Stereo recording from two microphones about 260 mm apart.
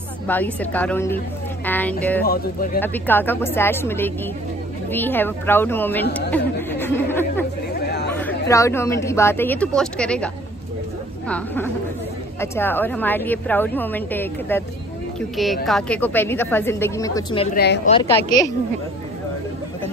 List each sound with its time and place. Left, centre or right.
0.3 s a woman's voice: centre
2.2 s speech: left
2.8 s a woman's voice: centre
6.3 s chatter: centre
7.7 s chatter: left
8.1 s a woman's voice: centre